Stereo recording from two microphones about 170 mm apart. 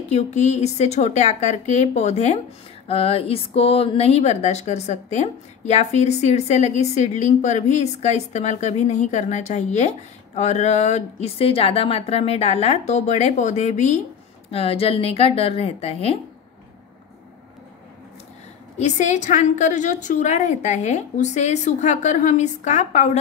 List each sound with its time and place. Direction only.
0.1 s speech: 40° left (ahead or behind)
18.8 s a woman's voice: 45° left (ahead or behind)